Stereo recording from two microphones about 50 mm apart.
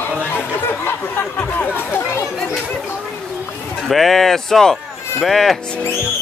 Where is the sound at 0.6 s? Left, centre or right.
Left.